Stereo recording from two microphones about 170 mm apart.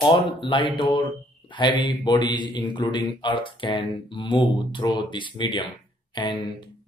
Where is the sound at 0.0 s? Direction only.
25° left (ahead or behind).